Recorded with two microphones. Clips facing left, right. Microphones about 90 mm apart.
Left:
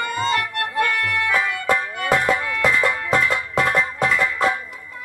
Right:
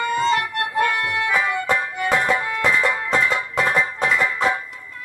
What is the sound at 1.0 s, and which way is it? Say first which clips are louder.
Music: even; 30° right (ahead or behind).